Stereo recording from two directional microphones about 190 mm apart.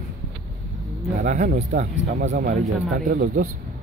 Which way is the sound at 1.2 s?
45° right (ahead or behind).